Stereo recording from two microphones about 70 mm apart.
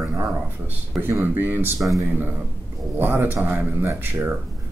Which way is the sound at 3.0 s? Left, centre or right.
Right.